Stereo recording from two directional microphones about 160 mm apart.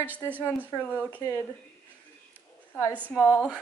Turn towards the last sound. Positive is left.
turn(degrees=-5)  # may be behind; listen again after turning